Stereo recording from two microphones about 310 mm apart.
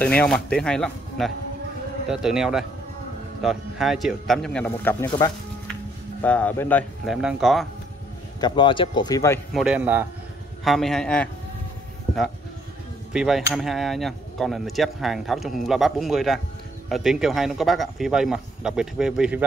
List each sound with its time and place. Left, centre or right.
0.0 s speech: centre
8.4 s speech: centre
13.1 s speech: centre